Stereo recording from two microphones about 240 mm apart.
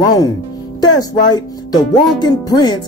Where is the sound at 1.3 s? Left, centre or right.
Centre.